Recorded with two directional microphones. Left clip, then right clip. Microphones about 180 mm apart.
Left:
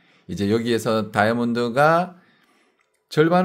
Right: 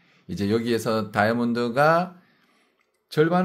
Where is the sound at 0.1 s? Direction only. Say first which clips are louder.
Left 3 dB; 20° left (ahead or behind).